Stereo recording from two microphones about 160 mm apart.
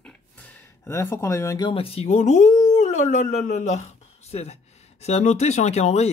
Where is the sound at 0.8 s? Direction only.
20° left (ahead or behind).